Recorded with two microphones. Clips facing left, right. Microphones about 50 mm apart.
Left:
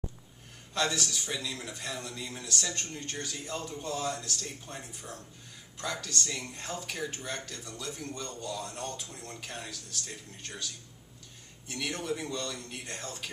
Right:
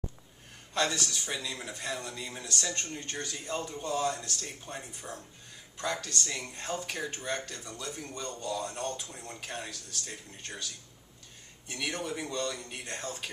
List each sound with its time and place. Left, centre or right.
0.7 s speech: centre
11.7 s speech: centre
12.8 s speech: centre